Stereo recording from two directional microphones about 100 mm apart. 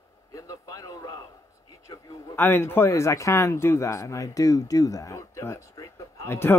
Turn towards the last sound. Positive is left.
turn(degrees=25)  # may be behind; listen again after turning